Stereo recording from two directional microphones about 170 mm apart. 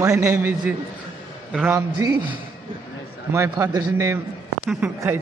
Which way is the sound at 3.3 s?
15° right (ahead or behind).